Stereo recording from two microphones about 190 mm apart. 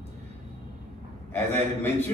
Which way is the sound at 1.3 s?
10° left (ahead or behind).